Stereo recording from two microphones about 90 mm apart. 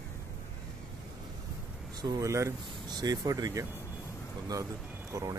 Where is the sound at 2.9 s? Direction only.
45° right (ahead or behind).